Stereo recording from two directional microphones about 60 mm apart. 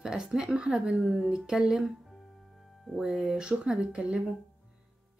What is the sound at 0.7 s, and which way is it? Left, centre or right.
Speech, centre.